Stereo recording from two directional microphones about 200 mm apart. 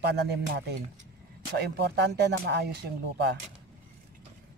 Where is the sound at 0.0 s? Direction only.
55° right (ahead or behind).